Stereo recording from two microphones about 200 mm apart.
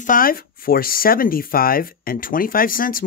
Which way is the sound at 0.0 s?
45° left (ahead or behind).